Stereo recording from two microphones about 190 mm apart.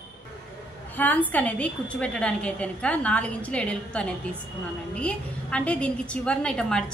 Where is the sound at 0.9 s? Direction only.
10° left (ahead or behind).